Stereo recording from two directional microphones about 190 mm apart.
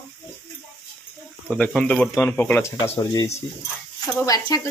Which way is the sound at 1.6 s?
5° left (ahead or behind).